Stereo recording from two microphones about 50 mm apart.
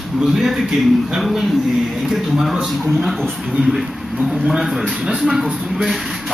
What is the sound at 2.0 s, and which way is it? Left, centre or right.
Speech, centre.